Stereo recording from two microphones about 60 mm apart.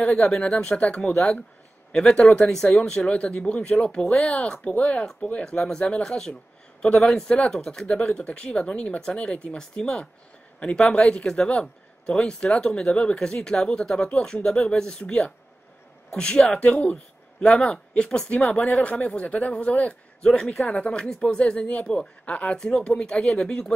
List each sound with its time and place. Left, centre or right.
0.3 s speech: centre
2.9 s speech: left